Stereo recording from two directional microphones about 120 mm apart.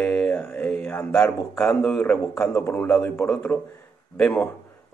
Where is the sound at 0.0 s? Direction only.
10° left (ahead or behind).